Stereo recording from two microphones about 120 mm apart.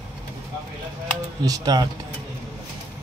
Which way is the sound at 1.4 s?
30° right (ahead or behind).